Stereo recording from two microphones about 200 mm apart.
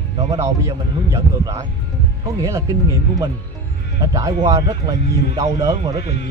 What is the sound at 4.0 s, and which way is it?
Speech, 15° right (ahead or behind).